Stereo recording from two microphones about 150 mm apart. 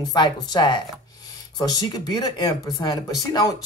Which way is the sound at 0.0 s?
25° left (ahead or behind).